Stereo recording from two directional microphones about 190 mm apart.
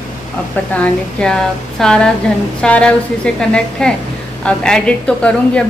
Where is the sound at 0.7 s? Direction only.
10° left (ahead or behind).